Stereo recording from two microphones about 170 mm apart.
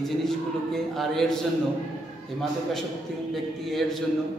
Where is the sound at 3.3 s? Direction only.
Centre (ahead or behind).